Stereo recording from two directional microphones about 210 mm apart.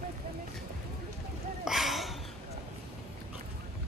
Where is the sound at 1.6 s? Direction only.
Centre (ahead or behind).